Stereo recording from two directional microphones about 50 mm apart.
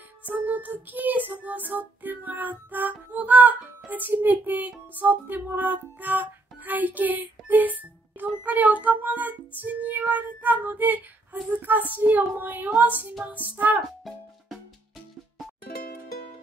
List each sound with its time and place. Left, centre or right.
0.3 s music: right